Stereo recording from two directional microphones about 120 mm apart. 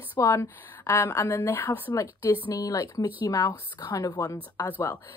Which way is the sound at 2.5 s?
30° left (ahead or behind).